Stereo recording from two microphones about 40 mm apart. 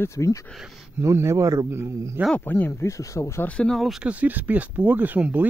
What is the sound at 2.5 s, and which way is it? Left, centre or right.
Speech, left.